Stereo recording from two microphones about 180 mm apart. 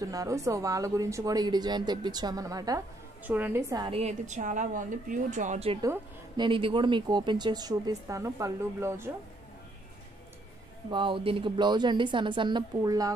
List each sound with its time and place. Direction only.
0.1 s a woman's voice: 20° right (ahead or behind)
3.8 s a woman's voice: 35° right (ahead or behind)
5.8 s speech: 20° right (ahead or behind)
10.9 s speech: 25° right (ahead or behind)